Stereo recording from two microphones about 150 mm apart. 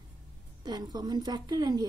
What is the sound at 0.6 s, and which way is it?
A woman's voice, 25° right (ahead or behind).